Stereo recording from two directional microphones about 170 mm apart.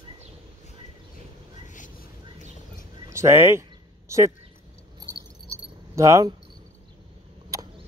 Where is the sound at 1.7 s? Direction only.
50° left (ahead or behind).